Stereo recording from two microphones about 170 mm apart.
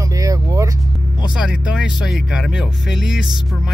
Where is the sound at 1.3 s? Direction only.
5° right (ahead or behind).